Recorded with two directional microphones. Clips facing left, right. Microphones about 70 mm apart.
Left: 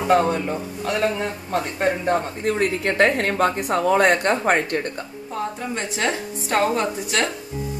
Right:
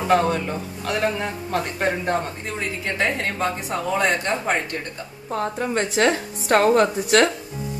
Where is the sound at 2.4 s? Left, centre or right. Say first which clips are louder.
Left 7 dB; left.